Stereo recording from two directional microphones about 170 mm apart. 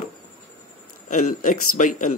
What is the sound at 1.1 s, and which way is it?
Speech, 50° left (ahead or behind).